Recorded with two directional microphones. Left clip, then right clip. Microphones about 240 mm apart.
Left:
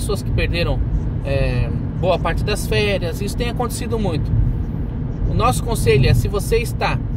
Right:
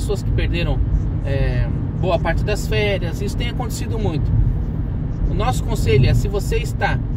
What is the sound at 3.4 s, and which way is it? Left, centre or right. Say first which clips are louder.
Speech: left 4 dB; left.